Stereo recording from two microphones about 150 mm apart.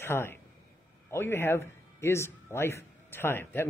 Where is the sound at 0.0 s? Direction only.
15° left (ahead or behind).